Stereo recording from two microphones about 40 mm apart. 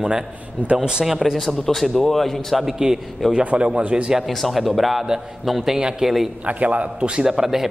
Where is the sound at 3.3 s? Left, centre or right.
Right.